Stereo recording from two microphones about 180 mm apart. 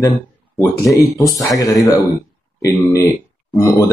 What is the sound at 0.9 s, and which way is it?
Speech, 20° left (ahead or behind).